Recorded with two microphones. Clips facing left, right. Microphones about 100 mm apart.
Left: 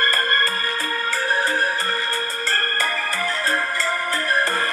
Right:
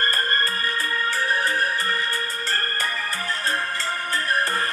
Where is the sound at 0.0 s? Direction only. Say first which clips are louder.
Left 3 dB; 90° left.